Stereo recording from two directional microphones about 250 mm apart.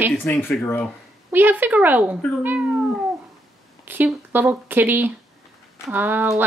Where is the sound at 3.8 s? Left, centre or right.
Centre.